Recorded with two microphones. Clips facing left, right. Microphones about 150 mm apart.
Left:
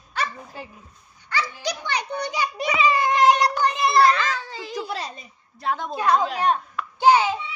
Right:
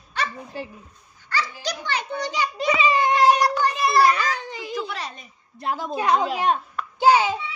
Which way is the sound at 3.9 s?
15° right (ahead or behind).